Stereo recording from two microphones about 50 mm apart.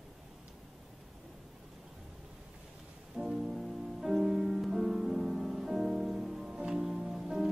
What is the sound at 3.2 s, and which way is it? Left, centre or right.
Music, centre.